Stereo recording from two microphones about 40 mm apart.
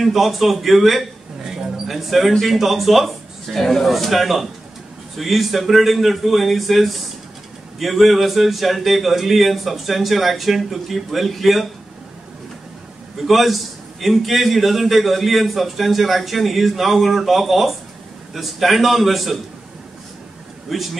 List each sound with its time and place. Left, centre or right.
0.0 s a man's voice: centre
1.4 s mouse: centre
2.4 s a man's voice: centre
13.2 s a man's voice: centre
20.7 s a man's voice: centre